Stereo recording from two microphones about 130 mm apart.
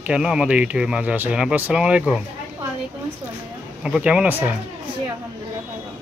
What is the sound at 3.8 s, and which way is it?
Speech, 5° right (ahead or behind).